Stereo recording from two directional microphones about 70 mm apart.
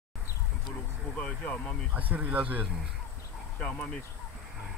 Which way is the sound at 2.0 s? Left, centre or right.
Right.